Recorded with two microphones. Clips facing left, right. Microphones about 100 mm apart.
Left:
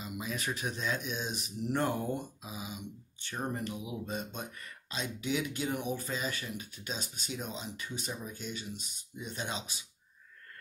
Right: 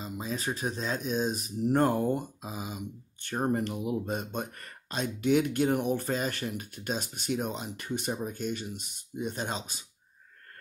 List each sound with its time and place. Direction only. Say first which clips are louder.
0.0 s speech: right 3 dB; 30° right (ahead or behind)